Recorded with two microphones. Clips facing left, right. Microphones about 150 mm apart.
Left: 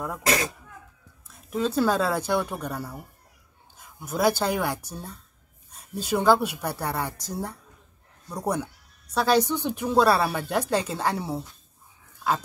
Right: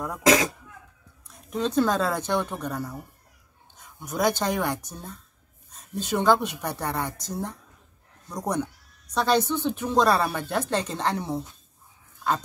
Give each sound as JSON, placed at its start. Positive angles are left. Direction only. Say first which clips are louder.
{"t": 0.2, "sound": "speech", "louder": "right 6 dB", "side_deg": -90}
{"t": 1.2, "sound": "speech", "louder": "left 1 dB", "side_deg": 5}